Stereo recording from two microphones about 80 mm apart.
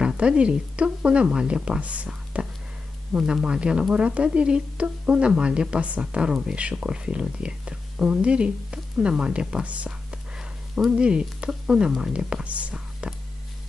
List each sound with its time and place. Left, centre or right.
0.0 s speech: centre